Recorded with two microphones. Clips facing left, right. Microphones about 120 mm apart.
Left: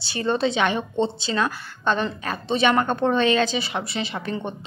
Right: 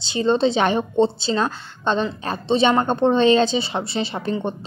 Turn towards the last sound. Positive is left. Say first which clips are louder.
# right 4 dB
turn(degrees=-30)  # may be behind; listen again after turning